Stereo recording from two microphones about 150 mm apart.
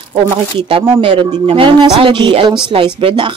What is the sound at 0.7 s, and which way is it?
Speech, 35° right (ahead or behind).